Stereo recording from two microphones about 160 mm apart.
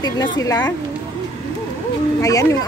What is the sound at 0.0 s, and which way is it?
Speech, 25° left (ahead or behind).